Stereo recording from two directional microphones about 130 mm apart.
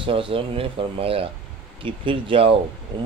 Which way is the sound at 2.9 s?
35° right (ahead or behind).